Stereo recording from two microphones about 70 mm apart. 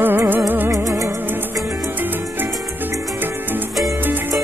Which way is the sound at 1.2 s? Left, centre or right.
Right.